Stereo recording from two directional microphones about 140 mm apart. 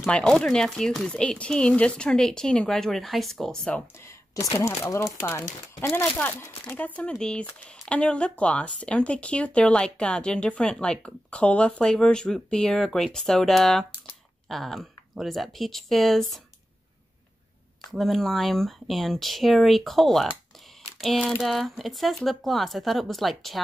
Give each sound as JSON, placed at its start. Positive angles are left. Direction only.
{"t": 0.0, "sound": "speech", "side_deg": 5}
{"t": 4.6, "sound": "speech", "side_deg": 20}
{"t": 17.9, "sound": "speech", "side_deg": 0}